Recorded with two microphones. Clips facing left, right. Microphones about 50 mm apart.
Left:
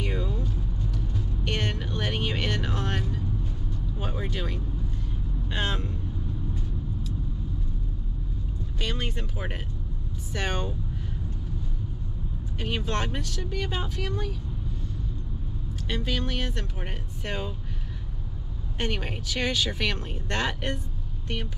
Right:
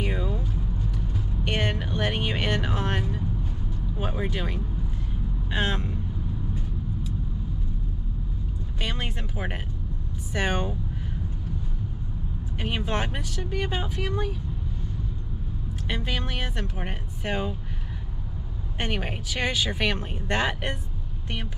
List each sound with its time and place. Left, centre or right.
0.0 s vehicle: centre
4.0 s speech: centre
8.8 s speech: centre
12.6 s speech: centre
15.9 s speech: centre
18.8 s speech: centre